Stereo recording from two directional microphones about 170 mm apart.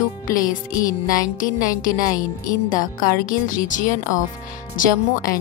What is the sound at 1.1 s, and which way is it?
Speech, 50° left (ahead or behind).